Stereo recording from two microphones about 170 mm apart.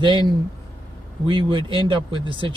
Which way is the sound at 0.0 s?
30° right (ahead or behind).